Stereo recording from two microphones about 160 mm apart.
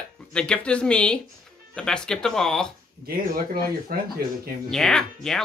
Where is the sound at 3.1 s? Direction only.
70° right (ahead or behind).